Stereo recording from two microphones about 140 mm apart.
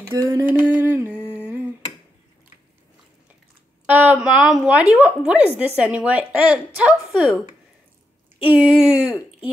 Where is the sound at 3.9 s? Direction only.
10° right (ahead or behind).